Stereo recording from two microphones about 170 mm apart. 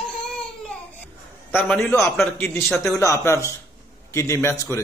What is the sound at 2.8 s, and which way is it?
Speech, 20° left (ahead or behind).